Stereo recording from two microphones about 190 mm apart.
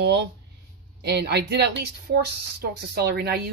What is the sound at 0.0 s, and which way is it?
A woman's voice, 60° right (ahead or behind).